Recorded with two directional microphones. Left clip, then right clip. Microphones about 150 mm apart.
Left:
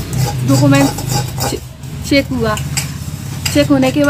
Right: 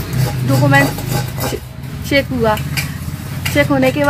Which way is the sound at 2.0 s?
20° left (ahead or behind).